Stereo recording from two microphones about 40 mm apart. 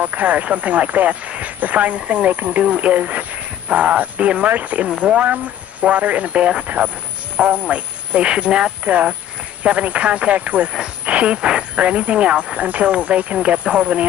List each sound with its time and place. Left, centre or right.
0.0 s speech: right
2.6 s speech: right
4.8 s speech: right
5.2 s speech: right
12.5 s speech: right
12.8 s speech: right